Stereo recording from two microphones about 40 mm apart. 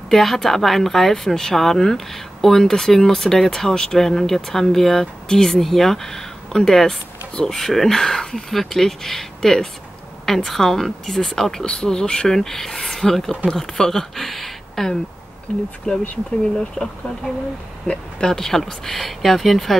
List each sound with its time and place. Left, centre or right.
0.1 s speech: centre
12.3 s speech: centre
15.9 s speech: left; by 19.8 s centre